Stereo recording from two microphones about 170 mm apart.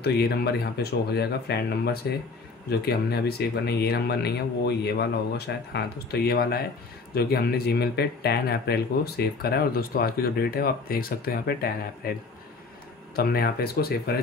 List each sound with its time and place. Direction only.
0.0 s speech: 70° left (ahead or behind)